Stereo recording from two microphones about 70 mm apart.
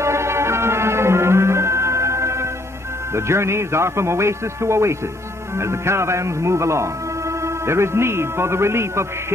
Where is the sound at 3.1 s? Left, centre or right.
Right.